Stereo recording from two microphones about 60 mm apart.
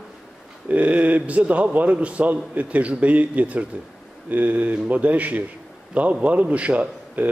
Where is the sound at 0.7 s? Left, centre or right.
Right.